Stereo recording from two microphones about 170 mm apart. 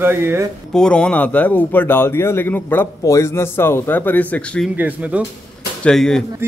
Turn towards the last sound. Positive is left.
turn(degrees=5)  # may be behind; listen again after turning